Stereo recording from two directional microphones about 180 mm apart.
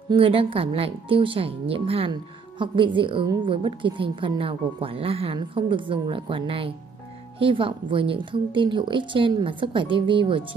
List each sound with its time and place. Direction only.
0.1 s a woman's voice: 30° right (ahead or behind)